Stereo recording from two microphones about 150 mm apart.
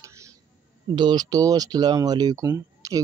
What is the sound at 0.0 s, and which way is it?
Music, 20° right (ahead or behind).